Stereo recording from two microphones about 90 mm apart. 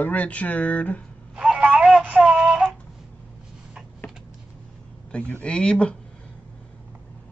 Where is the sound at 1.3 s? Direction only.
10° right (ahead or behind).